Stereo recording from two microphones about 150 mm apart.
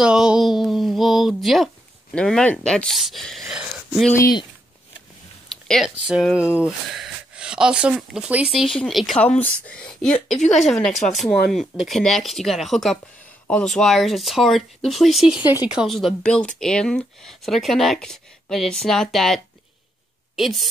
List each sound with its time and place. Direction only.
0.0 s a sound: 5° right (ahead or behind)
2.1 s speech: 5° left (ahead or behind)
4.1 s speech: 20° left (ahead or behind)
5.5 s speech: centre (ahead or behind)